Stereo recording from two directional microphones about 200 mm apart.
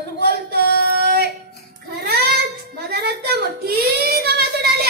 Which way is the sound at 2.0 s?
55° right (ahead or behind).